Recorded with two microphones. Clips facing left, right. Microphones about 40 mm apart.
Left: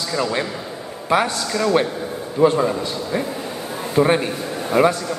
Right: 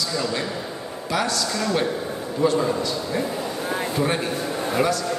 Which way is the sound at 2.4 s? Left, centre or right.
Left.